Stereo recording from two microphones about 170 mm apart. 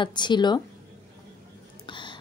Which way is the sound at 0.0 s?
25° left (ahead or behind).